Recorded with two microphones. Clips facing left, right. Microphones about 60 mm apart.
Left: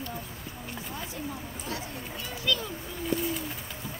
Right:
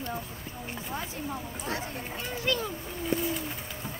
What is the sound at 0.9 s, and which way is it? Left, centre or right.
Speech, right.